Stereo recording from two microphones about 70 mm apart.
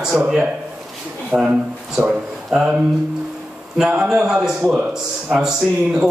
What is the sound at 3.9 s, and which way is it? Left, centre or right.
Speech, centre.